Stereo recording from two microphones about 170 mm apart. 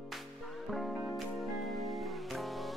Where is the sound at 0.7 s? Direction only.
Centre (ahead or behind).